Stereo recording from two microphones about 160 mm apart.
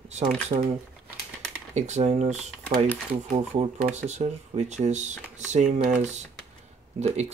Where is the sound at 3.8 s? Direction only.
50° right (ahead or behind).